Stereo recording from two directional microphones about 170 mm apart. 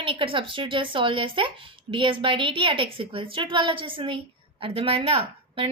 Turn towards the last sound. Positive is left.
turn(degrees=-35)  # may be behind; listen again after turning